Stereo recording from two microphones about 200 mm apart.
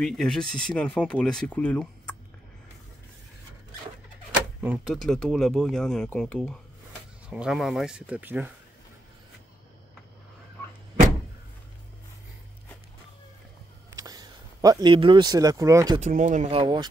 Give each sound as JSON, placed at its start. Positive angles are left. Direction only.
{"t": 0.0, "sound": "speech", "side_deg": 0}
{"t": 4.6, "sound": "speech", "side_deg": -5}
{"t": 13.8, "sound": "speech", "side_deg": -15}
{"t": 16.0, "sound": "speech", "side_deg": -40}